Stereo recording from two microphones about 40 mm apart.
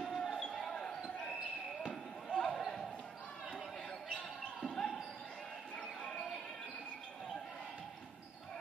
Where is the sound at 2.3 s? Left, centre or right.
Centre.